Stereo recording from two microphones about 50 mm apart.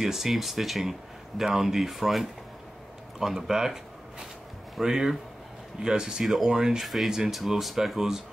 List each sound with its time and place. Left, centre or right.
0.0 s speech: centre